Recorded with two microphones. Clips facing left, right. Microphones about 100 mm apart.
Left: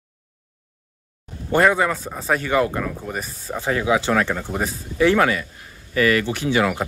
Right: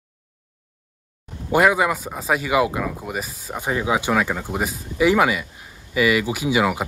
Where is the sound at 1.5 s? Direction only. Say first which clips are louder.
Even; 10° right (ahead or behind).